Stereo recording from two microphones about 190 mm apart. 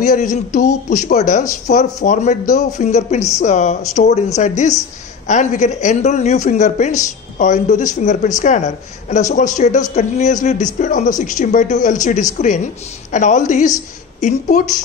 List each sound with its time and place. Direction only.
0.0 s speech: 40° left (ahead or behind)